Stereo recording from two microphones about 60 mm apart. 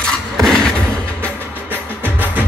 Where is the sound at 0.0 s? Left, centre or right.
Centre.